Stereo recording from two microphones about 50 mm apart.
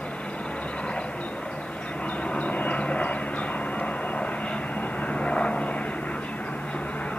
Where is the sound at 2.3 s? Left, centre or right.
Left.